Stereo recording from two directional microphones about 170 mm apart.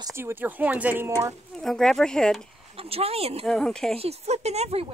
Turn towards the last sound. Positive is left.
turn(degrees=-40)  # may be behind; listen again after turning